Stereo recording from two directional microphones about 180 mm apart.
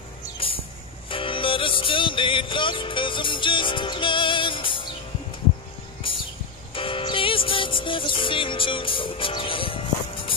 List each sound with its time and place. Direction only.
1.1 s music: 30° left (ahead or behind)
6.7 s music: 30° left (ahead or behind)